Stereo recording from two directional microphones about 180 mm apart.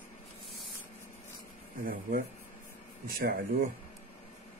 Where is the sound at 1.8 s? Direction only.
55° right (ahead or behind).